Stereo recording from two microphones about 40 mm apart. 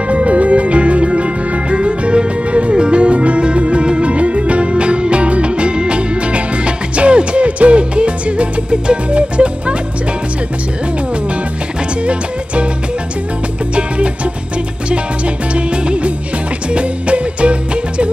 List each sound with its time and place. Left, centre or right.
0.1 s music: right
12.0 s music: right
13.7 s music: right